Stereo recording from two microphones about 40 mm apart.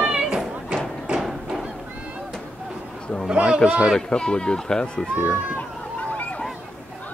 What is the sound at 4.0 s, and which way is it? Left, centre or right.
Speech, left.